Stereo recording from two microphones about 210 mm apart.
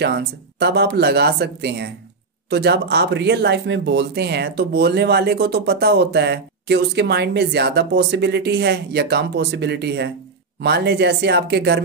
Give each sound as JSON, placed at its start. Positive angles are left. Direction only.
{"t": 0.0, "sound": "speech", "side_deg": -50}